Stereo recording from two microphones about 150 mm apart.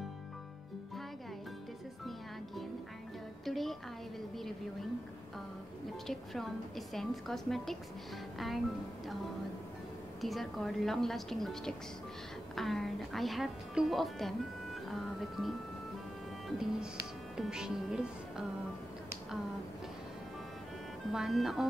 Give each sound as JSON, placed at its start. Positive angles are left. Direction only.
{"t": 3.4, "sound": "music", "side_deg": 0}
{"t": 6.0, "sound": "a woman's voice", "side_deg": 0}
{"t": 10.2, "sound": "a woman's voice", "side_deg": 0}
{"t": 21.1, "sound": "a woman's voice", "side_deg": 0}